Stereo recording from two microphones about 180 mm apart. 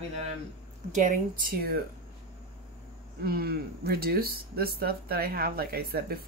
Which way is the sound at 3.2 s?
60° right (ahead or behind).